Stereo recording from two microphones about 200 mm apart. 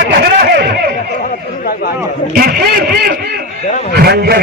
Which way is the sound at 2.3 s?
50° right (ahead or behind).